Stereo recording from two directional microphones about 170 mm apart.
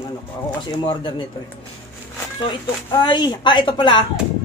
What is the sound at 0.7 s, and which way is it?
Speech, 30° left (ahead or behind).